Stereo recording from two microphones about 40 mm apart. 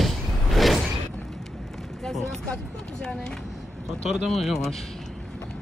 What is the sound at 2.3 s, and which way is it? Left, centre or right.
Speech, left.